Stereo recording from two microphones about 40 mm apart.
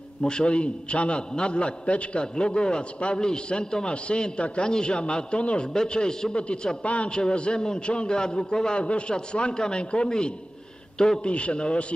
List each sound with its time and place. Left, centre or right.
0.2 s a man's voice: left